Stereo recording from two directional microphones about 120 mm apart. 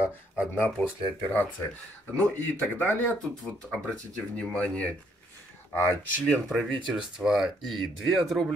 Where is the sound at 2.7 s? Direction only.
10° left (ahead or behind).